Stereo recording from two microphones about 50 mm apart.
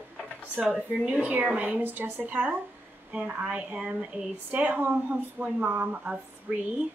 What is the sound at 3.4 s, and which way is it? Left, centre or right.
Speech, centre.